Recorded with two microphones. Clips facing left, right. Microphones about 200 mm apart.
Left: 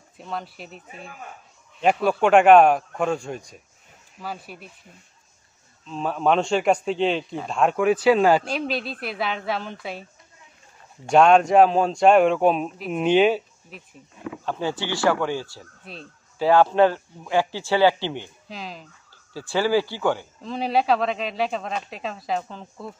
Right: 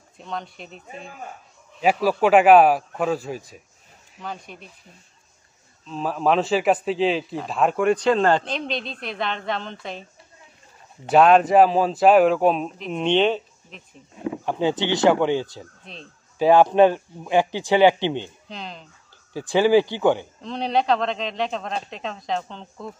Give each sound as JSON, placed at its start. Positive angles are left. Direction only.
{"t": 0.2, "sound": "a man's voice", "side_deg": 5}
{"t": 5.9, "sound": "a man's voice", "side_deg": 0}
{"t": 11.1, "sound": "a man's voice", "side_deg": 0}
{"t": 14.1, "sound": "a sound", "side_deg": -25}
{"t": 14.4, "sound": "speech", "side_deg": -15}
{"t": 15.8, "sound": "speech", "side_deg": 5}
{"t": 16.3, "sound": "speech", "side_deg": -15}
{"t": 18.5, "sound": "a man's voice", "side_deg": 5}
{"t": 19.3, "sound": "speech", "side_deg": -15}
{"t": 20.4, "sound": "a man's voice", "side_deg": 5}